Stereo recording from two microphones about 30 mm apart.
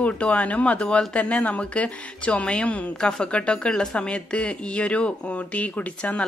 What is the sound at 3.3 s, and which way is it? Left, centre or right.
Speech, left.